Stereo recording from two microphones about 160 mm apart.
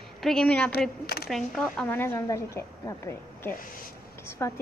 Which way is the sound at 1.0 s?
75° left (ahead or behind).